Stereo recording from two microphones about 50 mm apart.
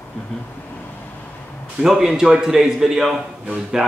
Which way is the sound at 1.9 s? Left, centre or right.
Centre.